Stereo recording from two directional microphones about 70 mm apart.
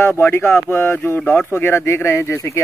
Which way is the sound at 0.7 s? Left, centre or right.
Left.